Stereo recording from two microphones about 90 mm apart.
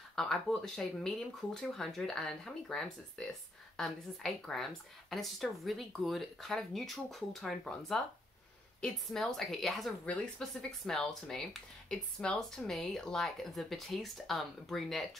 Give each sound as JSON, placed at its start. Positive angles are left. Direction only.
{"t": 0.1, "sound": "speech", "side_deg": 5}
{"t": 8.8, "sound": "speech", "side_deg": 5}